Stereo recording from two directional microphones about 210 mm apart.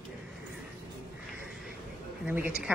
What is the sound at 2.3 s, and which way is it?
Speech, 10° right (ahead or behind).